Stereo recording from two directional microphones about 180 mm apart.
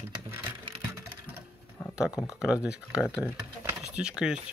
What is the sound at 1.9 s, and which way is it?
Speech, 5° right (ahead or behind).